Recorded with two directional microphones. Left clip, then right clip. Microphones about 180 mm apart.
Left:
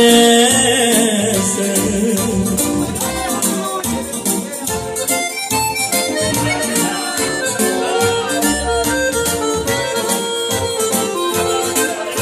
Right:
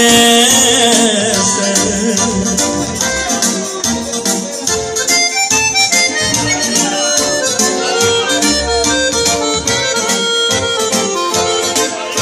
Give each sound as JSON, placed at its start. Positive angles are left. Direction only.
{"t": 0.0, "sound": "music", "side_deg": -40}